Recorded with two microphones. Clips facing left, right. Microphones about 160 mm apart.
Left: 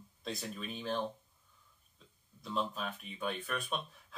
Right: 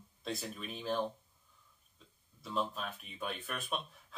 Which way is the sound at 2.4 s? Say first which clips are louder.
Even; centre (ahead or behind).